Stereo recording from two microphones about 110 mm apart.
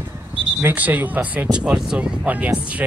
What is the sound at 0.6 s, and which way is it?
Speech, 15° right (ahead or behind).